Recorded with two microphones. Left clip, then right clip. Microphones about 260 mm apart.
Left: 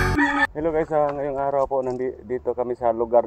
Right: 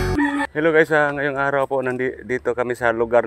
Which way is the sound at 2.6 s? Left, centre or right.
Right.